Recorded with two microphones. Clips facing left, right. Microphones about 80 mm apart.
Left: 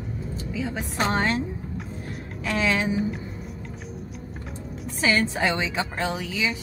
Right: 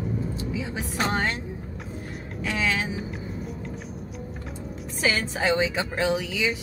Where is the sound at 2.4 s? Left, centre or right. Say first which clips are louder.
Left 2 dB; centre.